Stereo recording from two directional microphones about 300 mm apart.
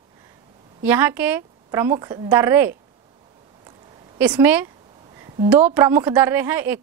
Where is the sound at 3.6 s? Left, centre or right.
Centre.